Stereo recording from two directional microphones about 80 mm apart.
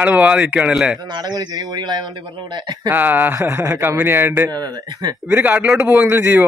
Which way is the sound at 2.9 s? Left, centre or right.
Right.